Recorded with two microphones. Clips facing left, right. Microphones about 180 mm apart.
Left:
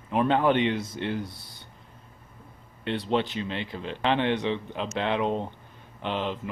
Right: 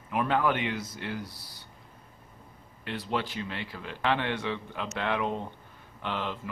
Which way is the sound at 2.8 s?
25° left (ahead or behind).